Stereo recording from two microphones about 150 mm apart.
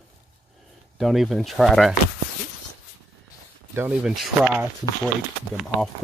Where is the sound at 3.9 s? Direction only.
5° right (ahead or behind).